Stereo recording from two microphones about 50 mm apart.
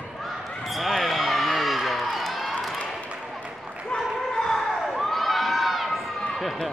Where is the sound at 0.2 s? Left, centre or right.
Centre.